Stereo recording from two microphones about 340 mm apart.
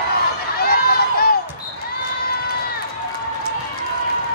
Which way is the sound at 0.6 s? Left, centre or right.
Left.